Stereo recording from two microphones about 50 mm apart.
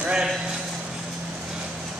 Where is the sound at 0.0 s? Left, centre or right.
Centre.